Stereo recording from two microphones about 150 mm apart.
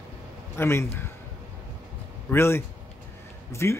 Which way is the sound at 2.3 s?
15° left (ahead or behind).